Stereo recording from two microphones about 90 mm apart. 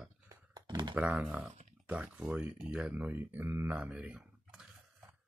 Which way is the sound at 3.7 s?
15° right (ahead or behind).